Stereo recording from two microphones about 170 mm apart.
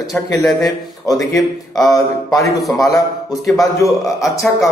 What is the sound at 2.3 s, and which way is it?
A man's voice, 20° left (ahead or behind).